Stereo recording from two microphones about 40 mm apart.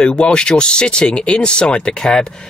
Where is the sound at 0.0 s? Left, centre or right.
Left.